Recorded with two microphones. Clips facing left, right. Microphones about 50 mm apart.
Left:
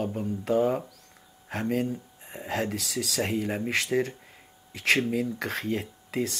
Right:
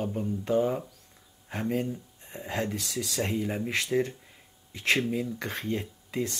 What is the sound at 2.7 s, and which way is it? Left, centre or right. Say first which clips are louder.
Speech: left 2 dB; left.